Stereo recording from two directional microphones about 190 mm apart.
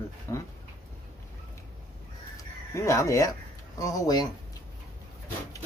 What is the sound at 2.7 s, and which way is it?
Speech, 15° left (ahead or behind).